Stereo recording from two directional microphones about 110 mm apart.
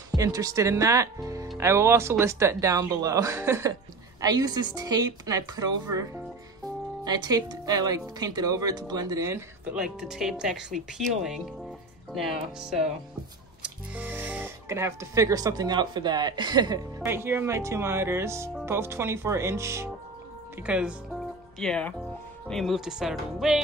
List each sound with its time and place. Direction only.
0.1 s speech: 30° right (ahead or behind)
4.2 s speech: 35° right (ahead or behind)
7.1 s speech: 35° right (ahead or behind)
9.7 s speech: 5° right (ahead or behind)
13.6 s music: 15° right (ahead or behind)
14.7 s speech: 25° right (ahead or behind)
17.0 s speech: 20° right (ahead or behind)
20.6 s speech: 10° right (ahead or behind)
21.5 s speech: 5° left (ahead or behind)